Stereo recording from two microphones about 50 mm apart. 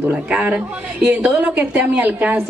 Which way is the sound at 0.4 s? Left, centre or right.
Right.